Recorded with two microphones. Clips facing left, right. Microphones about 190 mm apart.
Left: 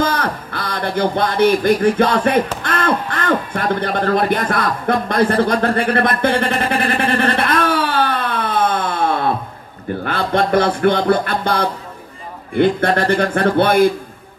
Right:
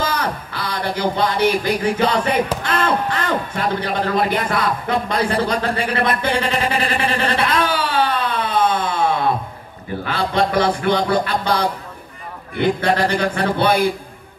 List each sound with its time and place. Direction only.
0.0 s speech: 50° left (ahead or behind)
5.3 s a sound: 55° left (ahead or behind)
10.0 s music: 55° left (ahead or behind)